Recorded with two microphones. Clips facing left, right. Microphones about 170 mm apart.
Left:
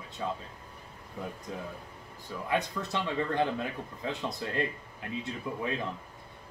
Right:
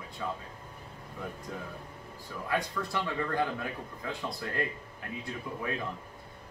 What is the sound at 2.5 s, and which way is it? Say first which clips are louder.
A man's voice: left 1 dB; 20° left (ahead or behind).